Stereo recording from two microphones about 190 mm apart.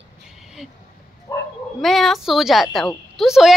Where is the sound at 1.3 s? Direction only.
15° left (ahead or behind).